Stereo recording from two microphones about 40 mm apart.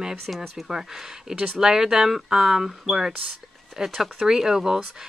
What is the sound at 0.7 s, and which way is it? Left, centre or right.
Speech, centre.